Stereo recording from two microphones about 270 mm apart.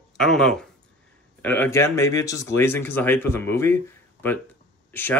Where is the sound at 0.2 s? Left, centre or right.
Centre.